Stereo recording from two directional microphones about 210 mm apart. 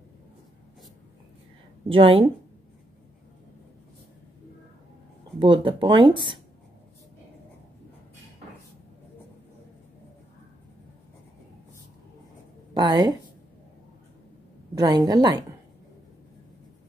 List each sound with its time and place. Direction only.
1.9 s speech: 25° right (ahead or behind)
5.4 s speech: 25° right (ahead or behind)
12.7 s a woman's voice: 20° right (ahead or behind)
14.8 s speech: 20° right (ahead or behind)